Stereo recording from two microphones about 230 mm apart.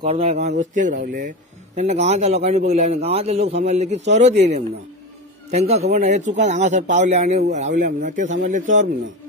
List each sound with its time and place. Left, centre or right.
0.0 s speech: right
1.8 s a man's voice: right